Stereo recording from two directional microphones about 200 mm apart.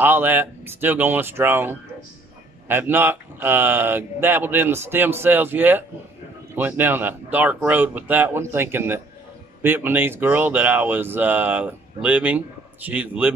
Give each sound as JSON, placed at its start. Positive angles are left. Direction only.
{"t": 0.0, "sound": "speech", "side_deg": -10}